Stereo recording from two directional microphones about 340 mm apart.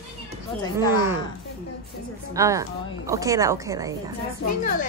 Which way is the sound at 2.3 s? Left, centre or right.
Centre.